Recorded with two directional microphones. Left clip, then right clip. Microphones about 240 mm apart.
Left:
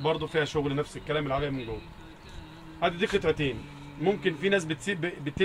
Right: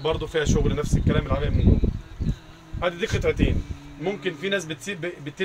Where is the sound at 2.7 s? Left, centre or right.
Right.